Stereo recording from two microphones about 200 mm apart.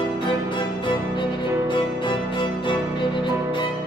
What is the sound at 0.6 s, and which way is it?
Music, 25° left (ahead or behind).